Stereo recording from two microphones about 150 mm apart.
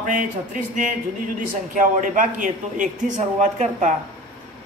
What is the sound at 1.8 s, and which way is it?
A man's voice, 60° right (ahead or behind).